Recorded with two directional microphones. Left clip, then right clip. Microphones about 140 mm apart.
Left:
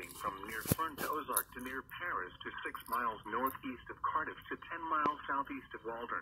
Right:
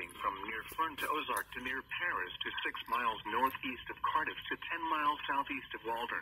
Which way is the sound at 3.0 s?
45° right (ahead or behind).